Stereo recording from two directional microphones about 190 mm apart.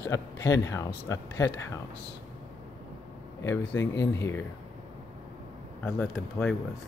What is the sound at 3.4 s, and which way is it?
Speech, 15° left (ahead or behind).